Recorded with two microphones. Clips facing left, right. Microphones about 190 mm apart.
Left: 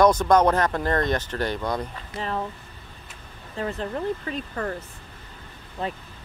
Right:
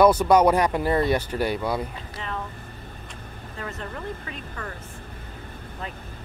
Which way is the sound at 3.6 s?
30° left (ahead or behind).